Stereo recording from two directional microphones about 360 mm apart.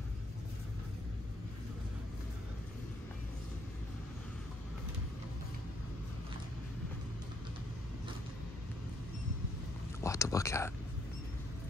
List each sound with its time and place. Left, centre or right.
10.0 s whispering: centre